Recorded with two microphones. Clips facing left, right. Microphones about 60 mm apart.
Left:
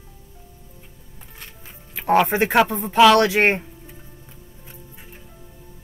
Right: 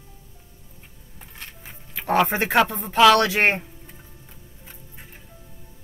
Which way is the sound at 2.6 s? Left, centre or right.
Centre.